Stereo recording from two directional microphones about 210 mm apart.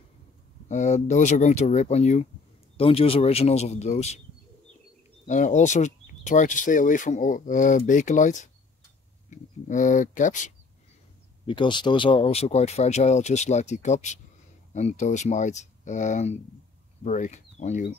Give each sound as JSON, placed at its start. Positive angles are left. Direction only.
{"t": 0.7, "sound": "speech", "side_deg": 35}
{"t": 5.3, "sound": "speech", "side_deg": 35}
{"t": 11.4, "sound": "speech", "side_deg": 20}